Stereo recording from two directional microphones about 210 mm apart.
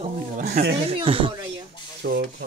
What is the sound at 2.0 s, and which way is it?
Speech, 50° right (ahead or behind).